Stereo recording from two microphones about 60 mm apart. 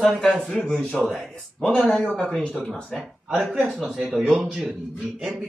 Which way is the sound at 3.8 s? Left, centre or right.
Centre.